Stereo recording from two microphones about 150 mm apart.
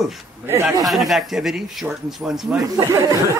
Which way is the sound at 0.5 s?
20° right (ahead or behind).